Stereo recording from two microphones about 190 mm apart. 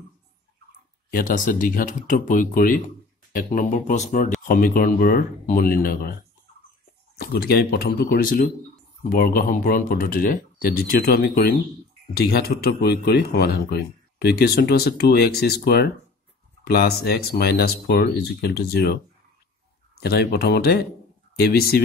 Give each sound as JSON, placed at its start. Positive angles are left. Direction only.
{"t": 1.1, "sound": "speech", "side_deg": 45}
{"t": 7.2, "sound": "speech", "side_deg": 55}
{"t": 20.0, "sound": "speech", "side_deg": 55}